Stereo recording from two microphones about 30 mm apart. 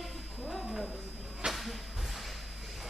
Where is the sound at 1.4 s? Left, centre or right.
Right.